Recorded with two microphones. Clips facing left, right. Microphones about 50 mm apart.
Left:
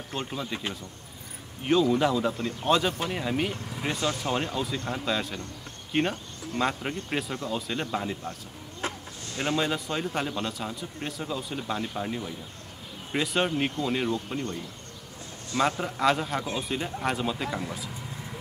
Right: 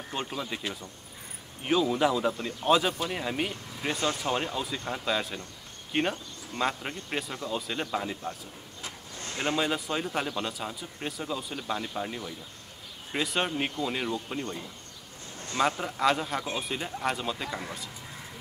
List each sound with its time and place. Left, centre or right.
0.3 s speech: centre
8.8 s a sound: left
9.6 s speech: centre
15.6 s speech: centre